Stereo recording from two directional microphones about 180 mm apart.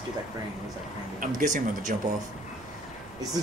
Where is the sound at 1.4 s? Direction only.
45° right (ahead or behind).